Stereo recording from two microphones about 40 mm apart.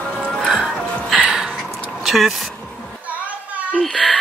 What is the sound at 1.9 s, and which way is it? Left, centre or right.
Vehicle, centre.